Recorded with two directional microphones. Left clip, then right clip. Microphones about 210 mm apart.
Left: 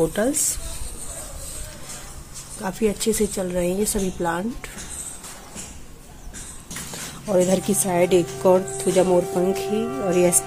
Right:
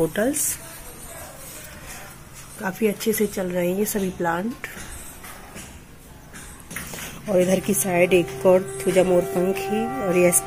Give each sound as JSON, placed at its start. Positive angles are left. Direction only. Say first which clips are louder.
{"t": 0.0, "sound": "speech", "louder": "left 1 dB", "side_deg": 5}
{"t": 2.6, "sound": "speech", "louder": "even", "side_deg": 0}
{"t": 6.9, "sound": "a sound", "louder": "left 1 dB", "side_deg": 0}
{"t": 7.8, "sound": "speech", "louder": "right 1 dB", "side_deg": 5}
{"t": 9.5, "sound": "speech", "louder": "left 1 dB", "side_deg": 50}